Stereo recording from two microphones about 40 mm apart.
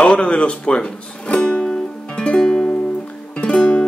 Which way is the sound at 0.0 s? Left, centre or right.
Left.